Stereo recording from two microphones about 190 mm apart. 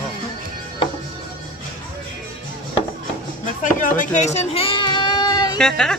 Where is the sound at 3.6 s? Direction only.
45° left (ahead or behind).